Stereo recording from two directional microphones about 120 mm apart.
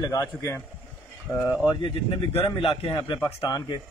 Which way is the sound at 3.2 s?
30° left (ahead or behind).